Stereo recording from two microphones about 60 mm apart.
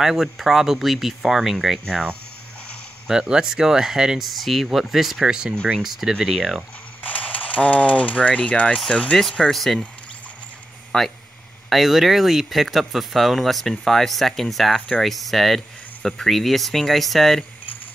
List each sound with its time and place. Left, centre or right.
0.0 s speech: centre
3.1 s speech: centre
5.8 s speech: centre
7.0 s speech: left
9.4 s speech: centre
10.9 s speech: centre
11.7 s speech: centre